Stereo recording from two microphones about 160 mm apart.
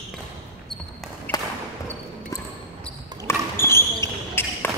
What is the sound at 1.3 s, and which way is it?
Basketball bounce, 25° left (ahead or behind).